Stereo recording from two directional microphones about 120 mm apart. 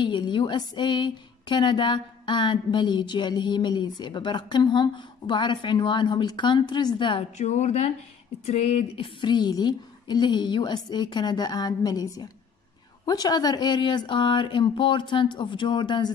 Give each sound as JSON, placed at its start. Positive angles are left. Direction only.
{"t": 0.0, "sound": "a woman's voice", "side_deg": 40}
{"t": 7.3, "sound": "a woman's voice", "side_deg": 70}